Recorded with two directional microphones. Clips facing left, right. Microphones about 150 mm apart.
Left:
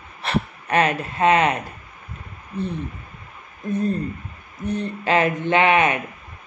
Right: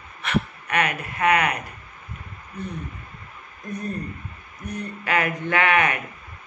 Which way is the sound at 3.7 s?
25° left (ahead or behind).